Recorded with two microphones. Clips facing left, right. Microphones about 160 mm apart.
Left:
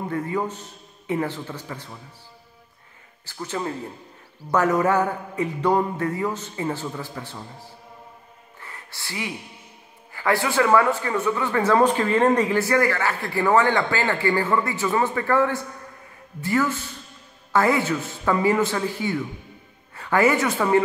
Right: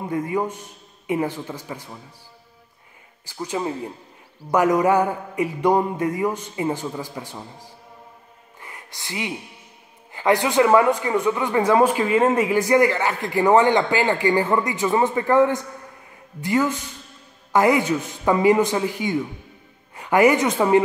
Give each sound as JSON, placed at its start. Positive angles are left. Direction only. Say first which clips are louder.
{"t": 0.1, "sound": "a man's voice", "louder": "right 4 dB", "side_deg": -15}
{"t": 3.3, "sound": "a man's voice", "louder": "right 3 dB", "side_deg": -15}
{"t": 8.5, "sound": "a sound", "louder": "right 1 dB", "side_deg": -15}
{"t": 10.1, "sound": "a man's voice", "louder": "right 4 dB", "side_deg": -20}